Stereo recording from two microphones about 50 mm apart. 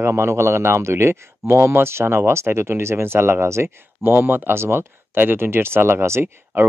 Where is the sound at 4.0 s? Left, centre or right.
Right.